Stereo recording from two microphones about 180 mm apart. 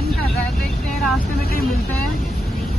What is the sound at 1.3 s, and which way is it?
Speech, 60° left (ahead or behind).